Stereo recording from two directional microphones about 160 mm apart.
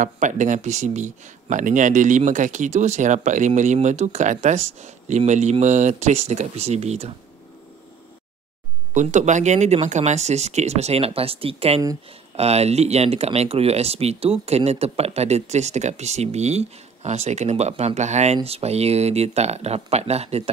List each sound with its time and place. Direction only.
0.0 s speech: 50° right (ahead or behind)
8.9 s speech: 50° right (ahead or behind)